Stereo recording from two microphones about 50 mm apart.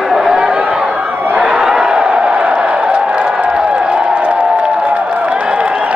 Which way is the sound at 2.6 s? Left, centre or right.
Right.